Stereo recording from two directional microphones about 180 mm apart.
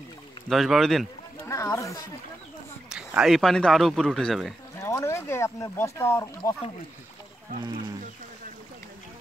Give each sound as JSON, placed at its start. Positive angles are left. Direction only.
{"t": 0.5, "sound": "speech", "side_deg": 0}
{"t": 1.4, "sound": "speech", "side_deg": 15}
{"t": 2.9, "sound": "speech", "side_deg": -5}
{"t": 4.8, "sound": "speech", "side_deg": 15}